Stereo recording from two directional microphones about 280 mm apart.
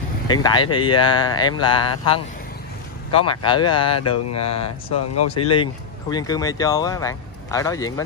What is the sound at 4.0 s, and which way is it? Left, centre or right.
Mantra, left.